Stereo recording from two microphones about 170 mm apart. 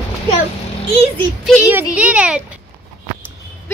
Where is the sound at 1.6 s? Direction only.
10° right (ahead or behind).